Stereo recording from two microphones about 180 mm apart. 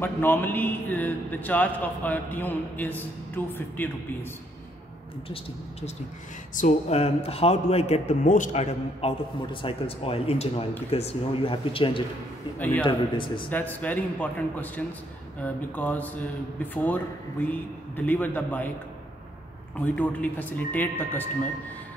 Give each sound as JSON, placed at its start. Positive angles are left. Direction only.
{"t": 0.0, "sound": "a man's voice", "side_deg": 10}
{"t": 6.5, "sound": "a man's voice", "side_deg": 40}
{"t": 12.5, "sound": "a man's voice", "side_deg": 10}
{"t": 12.8, "sound": "speech", "side_deg": 25}
{"t": 13.5, "sound": "a man's voice", "side_deg": 10}
{"t": 19.8, "sound": "a man's voice", "side_deg": 10}